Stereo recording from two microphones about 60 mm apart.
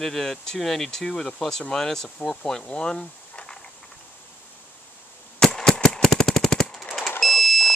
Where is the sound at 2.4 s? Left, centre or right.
Centre.